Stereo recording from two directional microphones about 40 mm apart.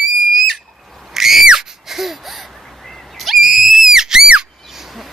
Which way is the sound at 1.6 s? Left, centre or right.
Centre.